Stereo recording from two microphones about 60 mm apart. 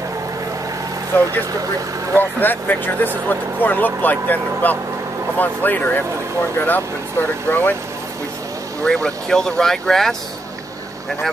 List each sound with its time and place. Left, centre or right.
1.1 s speech: left
2.4 s speech: left
8.8 s speech: centre